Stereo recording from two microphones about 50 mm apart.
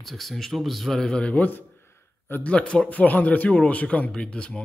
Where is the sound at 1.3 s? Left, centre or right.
Left.